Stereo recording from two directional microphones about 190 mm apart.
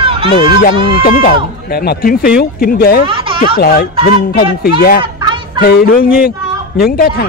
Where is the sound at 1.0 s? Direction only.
50° left (ahead or behind).